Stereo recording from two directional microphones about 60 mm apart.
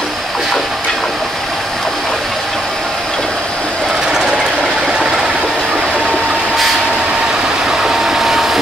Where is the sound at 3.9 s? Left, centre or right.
Centre.